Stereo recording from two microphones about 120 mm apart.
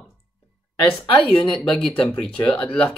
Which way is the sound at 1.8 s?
5° left (ahead or behind).